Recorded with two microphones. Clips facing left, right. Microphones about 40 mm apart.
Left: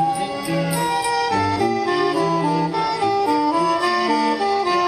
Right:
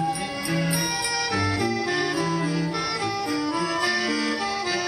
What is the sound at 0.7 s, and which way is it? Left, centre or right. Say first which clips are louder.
Music: left 7 dB; left.